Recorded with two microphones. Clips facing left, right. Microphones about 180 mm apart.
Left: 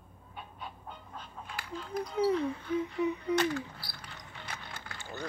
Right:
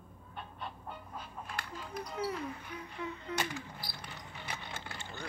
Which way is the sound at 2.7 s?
20° left (ahead or behind).